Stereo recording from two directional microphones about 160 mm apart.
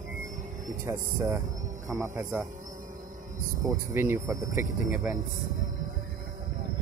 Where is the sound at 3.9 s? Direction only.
15° right (ahead or behind).